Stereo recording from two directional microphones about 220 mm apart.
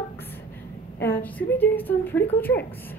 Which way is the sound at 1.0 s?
10° left (ahead or behind).